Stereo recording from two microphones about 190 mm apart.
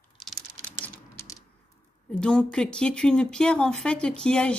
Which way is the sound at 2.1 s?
5° left (ahead or behind).